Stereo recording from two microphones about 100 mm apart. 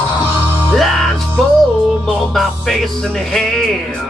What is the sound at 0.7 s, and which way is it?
Music, centre (ahead or behind).